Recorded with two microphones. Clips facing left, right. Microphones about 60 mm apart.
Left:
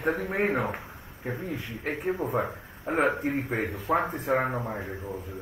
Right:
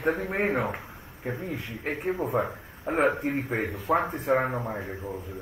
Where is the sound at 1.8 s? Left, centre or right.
Centre.